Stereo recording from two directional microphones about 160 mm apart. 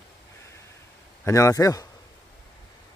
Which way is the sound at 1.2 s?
20° left (ahead or behind).